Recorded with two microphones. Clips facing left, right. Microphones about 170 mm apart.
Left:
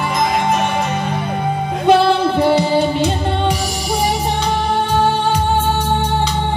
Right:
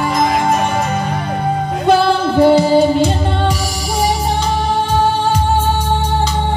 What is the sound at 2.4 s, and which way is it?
Music, 5° right (ahead or behind).